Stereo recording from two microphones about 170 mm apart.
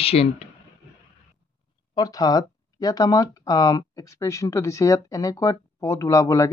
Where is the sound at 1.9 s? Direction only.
20° left (ahead or behind).